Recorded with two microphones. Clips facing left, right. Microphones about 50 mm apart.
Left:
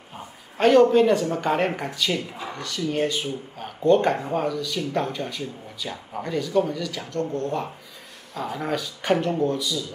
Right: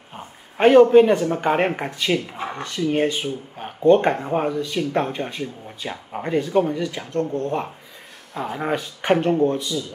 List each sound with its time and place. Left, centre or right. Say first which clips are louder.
0.6 s speech: right 4 dB; right